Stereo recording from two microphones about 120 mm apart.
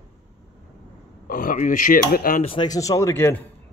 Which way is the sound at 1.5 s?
90° left.